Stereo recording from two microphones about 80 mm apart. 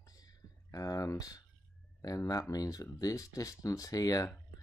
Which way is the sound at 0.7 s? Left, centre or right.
Left.